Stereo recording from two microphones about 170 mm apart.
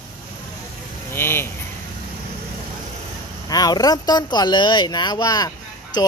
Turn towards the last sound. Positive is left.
turn(degrees=20)  # may be behind; listen again after turning